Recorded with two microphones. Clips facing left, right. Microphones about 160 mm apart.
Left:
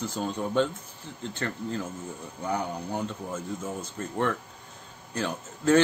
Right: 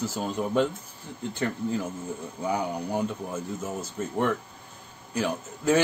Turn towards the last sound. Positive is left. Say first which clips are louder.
# left 1 dB
turn(degrees=-10)  # may be behind; listen again after turning